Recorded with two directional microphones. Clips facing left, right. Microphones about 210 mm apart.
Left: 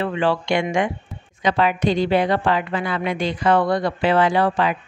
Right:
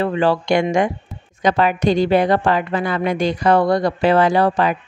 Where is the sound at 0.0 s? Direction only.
40° right (ahead or behind).